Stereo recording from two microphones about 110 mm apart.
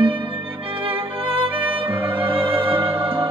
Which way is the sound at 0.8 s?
55° right (ahead or behind).